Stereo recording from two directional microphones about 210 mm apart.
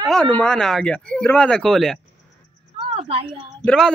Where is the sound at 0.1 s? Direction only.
5° left (ahead or behind).